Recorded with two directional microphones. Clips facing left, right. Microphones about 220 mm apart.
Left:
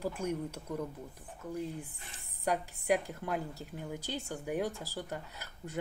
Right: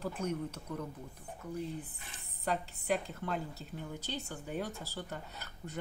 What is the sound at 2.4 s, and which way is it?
A woman's voice, 10° left (ahead or behind).